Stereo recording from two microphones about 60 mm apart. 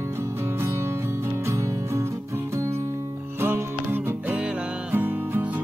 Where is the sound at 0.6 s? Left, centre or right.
Right.